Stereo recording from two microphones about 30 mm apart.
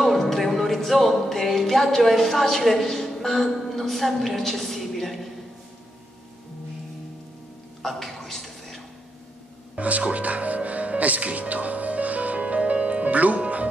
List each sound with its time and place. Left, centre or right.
0.2 s music: centre
3.7 s a woman's voice: centre
7.8 s a sound: centre
9.8 s speech: right
10.0 s music: right